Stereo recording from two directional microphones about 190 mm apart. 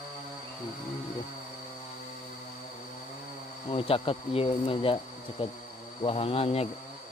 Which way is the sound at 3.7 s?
30° left (ahead or behind).